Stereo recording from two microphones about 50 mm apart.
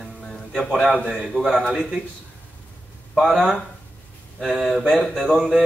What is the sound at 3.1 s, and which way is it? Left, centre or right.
A man's voice, centre.